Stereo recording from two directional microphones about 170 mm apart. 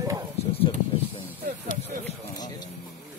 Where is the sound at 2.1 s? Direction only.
25° left (ahead or behind).